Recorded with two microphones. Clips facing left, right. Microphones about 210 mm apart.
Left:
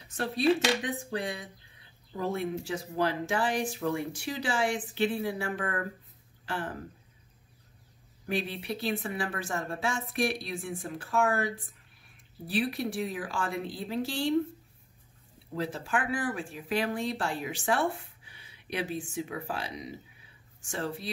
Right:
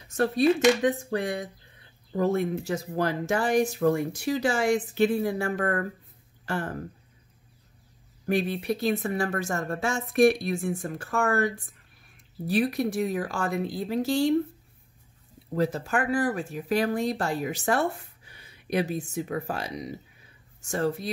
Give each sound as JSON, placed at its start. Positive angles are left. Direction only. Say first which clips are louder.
{"t": 0.1, "sound": "speech", "louder": "right 4 dB", "side_deg": -45}
{"t": 8.3, "sound": "speech", "louder": "right 7 dB", "side_deg": -45}
{"t": 15.5, "sound": "speech", "louder": "right 6 dB", "side_deg": -40}